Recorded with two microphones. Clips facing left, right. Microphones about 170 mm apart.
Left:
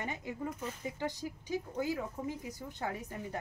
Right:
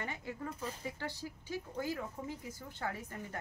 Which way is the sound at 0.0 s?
15° left (ahead or behind).